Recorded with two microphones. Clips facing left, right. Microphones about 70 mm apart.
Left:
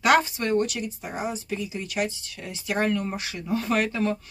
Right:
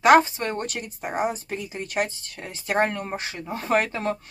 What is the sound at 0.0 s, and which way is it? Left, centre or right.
Speech, right.